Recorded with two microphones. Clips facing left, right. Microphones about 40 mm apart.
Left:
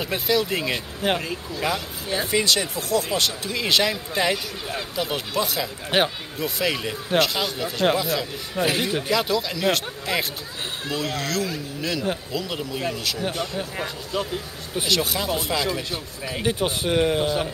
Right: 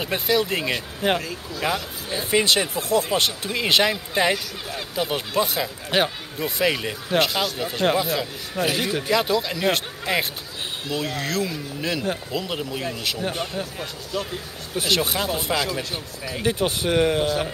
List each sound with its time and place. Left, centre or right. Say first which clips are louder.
0.0 s speech: right 1 dB; centre
1.6 s speech: right 1 dB; centre
5.9 s speech: even; centre
6.4 s speech: right 2 dB; centre
8.7 s speech: even; centre
9.1 s speech: right 3 dB; centre
14.1 s speech: left 1 dB; centre
14.9 s speech: right 1 dB; centre
16.4 s speech: right 1 dB; centre